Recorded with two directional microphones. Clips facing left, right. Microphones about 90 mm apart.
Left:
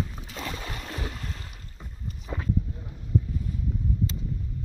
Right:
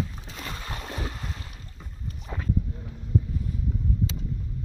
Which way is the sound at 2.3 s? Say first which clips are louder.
Left 2 dB; 5° left (ahead or behind).